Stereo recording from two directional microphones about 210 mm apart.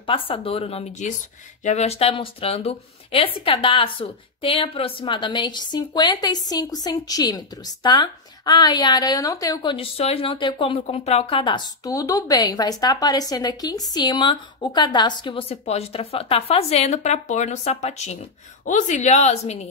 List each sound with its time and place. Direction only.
0.0 s a woman's voice: 25° left (ahead or behind)